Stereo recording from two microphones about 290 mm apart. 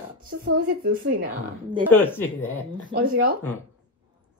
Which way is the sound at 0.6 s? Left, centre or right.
Right.